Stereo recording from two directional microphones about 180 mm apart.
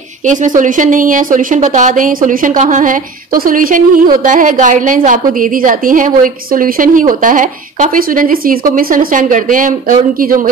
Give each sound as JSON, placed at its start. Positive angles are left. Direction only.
{"t": 0.3, "sound": "a woman's voice", "side_deg": -45}